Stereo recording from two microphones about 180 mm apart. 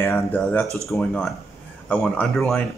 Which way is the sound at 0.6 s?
15° right (ahead or behind).